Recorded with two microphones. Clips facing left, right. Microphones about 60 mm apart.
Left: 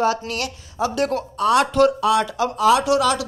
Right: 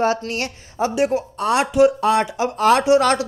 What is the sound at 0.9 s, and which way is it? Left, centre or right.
Speech, centre.